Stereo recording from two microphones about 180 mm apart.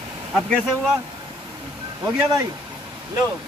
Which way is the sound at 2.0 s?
20° right (ahead or behind).